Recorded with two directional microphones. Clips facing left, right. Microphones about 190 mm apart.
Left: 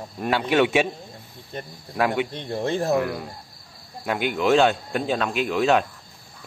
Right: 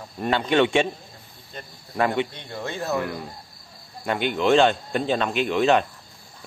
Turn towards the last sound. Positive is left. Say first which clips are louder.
# right 1 dB
turn(degrees=0)  # may be behind; listen again after turning